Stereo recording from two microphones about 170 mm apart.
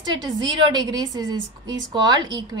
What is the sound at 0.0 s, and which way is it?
A woman's voice, 25° right (ahead or behind).